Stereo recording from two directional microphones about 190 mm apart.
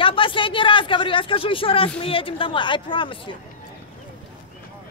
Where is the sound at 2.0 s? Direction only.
30° left (ahead or behind).